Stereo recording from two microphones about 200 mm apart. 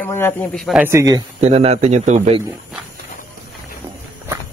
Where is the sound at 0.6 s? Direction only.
10° right (ahead or behind).